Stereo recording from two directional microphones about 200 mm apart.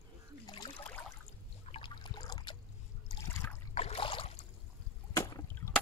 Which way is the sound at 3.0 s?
10° left (ahead or behind).